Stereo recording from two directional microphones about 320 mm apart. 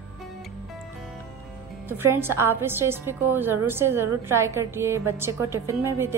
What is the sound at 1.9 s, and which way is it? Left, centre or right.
A woman's voice, centre.